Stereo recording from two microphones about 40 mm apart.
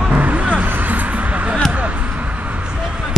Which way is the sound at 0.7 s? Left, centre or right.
Right.